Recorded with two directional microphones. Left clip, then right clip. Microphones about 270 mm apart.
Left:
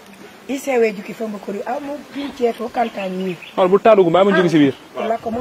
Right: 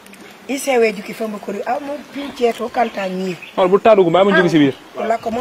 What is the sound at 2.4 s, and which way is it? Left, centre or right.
A man's voice, centre.